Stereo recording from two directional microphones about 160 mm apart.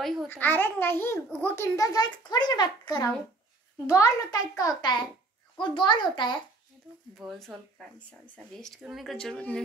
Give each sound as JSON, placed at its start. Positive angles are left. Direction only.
{"t": 0.0, "sound": "a child's voice", "side_deg": 0}
{"t": 0.3, "sound": "a child's voice", "side_deg": 10}
{"t": 7.2, "sound": "speech", "side_deg": 0}